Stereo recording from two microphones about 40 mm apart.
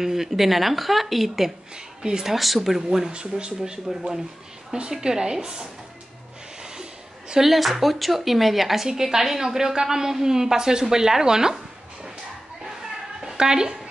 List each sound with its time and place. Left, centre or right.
0.0 s a woman's voice: centre
2.3 s a woman's voice: centre
3.1 s a woman's voice: right
6.6 s a sound: centre
7.4 s a woman's voice: centre
13.2 s a woman's voice: centre